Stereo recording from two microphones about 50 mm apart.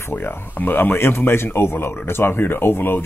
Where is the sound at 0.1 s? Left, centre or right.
Left.